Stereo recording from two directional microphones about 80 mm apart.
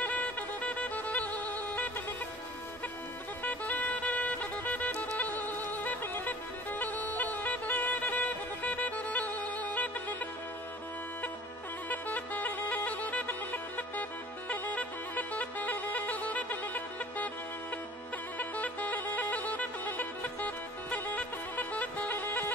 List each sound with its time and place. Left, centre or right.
0.0 s music: centre
3.4 s music: centre
11.9 s music: left
18.4 s music: left